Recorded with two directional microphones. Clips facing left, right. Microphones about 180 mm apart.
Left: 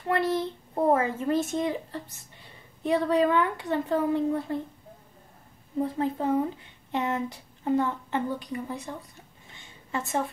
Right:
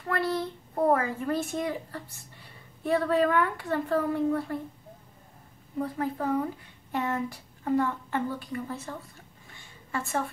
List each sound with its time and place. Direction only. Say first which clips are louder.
0.1 s a child's voice: left 3 dB; 20° left (ahead or behind)
5.8 s a child's voice: left 3 dB; 25° left (ahead or behind)
9.5 s a sound: left 2 dB; 20° left (ahead or behind)